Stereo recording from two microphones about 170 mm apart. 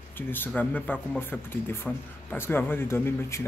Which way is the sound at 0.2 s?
10° left (ahead or behind).